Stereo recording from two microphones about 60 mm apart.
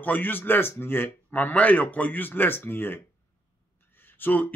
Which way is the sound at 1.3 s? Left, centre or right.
Left.